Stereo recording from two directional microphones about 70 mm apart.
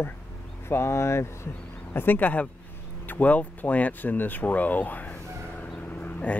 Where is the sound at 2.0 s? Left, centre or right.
Left.